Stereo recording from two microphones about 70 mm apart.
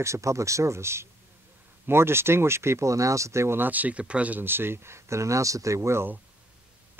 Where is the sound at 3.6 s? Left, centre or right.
Right.